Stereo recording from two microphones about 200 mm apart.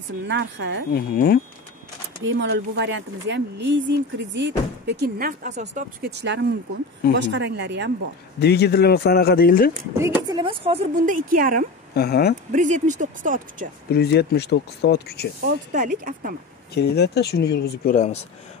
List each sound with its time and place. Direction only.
0.3 s speech: 65° right (ahead or behind)
0.9 s speech: 50° left (ahead or behind)
2.2 s speech: 65° right (ahead or behind); by 5.9 s 35° right (ahead or behind)
6.0 s speech: 60° right (ahead or behind)
8.4 s speech: 55° left (ahead or behind)
9.9 s speech: 15° right (ahead or behind)
11.1 s speech: 45° right (ahead or behind)
11.9 s speech: 50° left (ahead or behind)
12.5 s speech: 35° right (ahead or behind)
13.9 s speech: 55° left (ahead or behind)
15.4 s speech: 40° right (ahead or behind)
16.7 s speech: 55° left (ahead or behind)
17.9 s speech: 35° left (ahead or behind)